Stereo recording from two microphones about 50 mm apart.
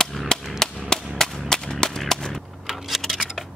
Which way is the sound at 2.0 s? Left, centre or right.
Centre.